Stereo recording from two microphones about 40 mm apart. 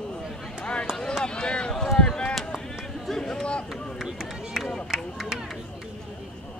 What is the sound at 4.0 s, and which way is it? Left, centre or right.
Run, centre.